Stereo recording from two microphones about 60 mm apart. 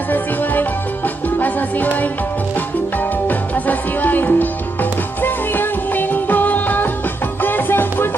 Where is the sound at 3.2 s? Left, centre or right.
Left.